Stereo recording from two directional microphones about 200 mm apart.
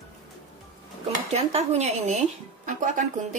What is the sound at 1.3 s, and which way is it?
A woman's voice, 35° right (ahead or behind).